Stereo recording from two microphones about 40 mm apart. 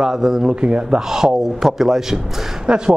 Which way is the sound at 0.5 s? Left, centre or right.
Right.